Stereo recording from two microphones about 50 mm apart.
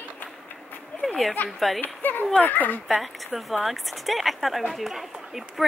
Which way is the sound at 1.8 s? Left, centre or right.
Left.